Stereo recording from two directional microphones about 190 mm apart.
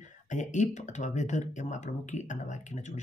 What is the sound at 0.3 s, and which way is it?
Speech, 40° left (ahead or behind).